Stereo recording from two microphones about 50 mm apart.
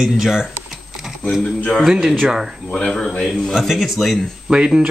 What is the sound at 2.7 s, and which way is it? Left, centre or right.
Speech, centre.